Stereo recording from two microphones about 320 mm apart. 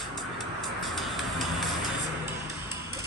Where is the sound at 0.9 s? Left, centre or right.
Centre.